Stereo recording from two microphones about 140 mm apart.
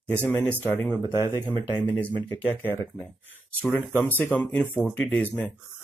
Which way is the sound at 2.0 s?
10° left (ahead or behind).